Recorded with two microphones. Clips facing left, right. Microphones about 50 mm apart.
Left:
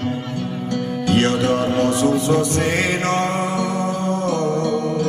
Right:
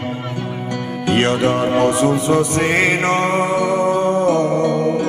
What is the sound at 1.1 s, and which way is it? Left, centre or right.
Music, right.